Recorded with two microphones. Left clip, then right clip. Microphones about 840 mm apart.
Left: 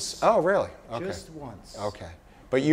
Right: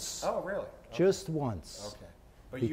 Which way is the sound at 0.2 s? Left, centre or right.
Left.